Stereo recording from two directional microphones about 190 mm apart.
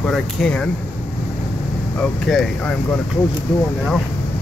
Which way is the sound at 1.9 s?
5° left (ahead or behind).